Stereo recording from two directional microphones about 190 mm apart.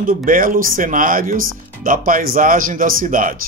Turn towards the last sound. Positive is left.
turn(degrees=-45)  # may be behind; listen again after turning